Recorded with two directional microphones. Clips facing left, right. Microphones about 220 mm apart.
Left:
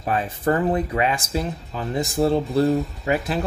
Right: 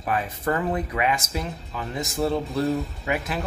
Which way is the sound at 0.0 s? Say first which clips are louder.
Left 3 dB; 30° left (ahead or behind).